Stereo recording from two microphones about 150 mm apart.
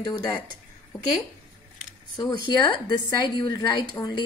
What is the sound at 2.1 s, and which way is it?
A woman's voice, 25° left (ahead or behind).